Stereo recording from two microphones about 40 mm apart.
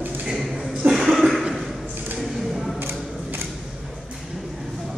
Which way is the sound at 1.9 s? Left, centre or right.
Right.